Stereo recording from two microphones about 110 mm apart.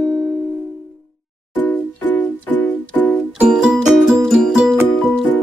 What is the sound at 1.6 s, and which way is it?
Music, 15° left (ahead or behind).